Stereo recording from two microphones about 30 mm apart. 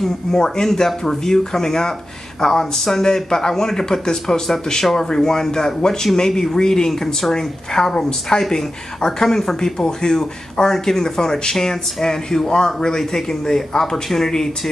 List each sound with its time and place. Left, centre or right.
0.3 s speech: centre
9.0 s speech: left